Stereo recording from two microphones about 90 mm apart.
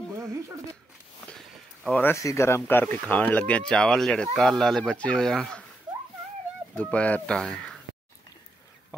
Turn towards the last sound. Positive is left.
turn(degrees=10)  # may be behind; listen again after turning